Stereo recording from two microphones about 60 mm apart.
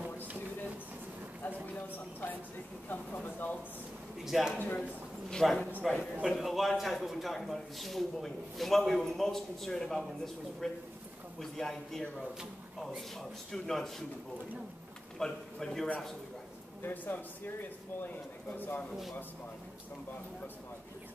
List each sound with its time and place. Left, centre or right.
0.0 s a sound: right
1.4 s a sound: left
3.3 s speech: left
4.2 s a man's voice: centre
5.3 s a man's voice: centre
15.1 s a man's voice: centre
16.8 s speech: left